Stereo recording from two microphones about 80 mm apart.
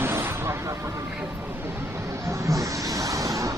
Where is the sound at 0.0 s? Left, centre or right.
Right.